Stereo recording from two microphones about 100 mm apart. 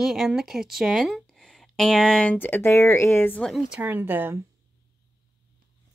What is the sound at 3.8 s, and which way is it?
Speech, 20° right (ahead or behind).